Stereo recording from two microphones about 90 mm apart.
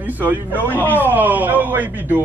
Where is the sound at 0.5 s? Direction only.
20° left (ahead or behind).